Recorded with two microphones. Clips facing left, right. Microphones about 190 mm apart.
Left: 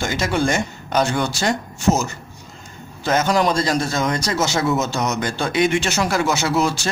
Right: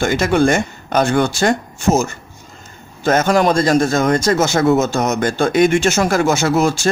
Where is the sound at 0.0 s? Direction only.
55° right (ahead or behind).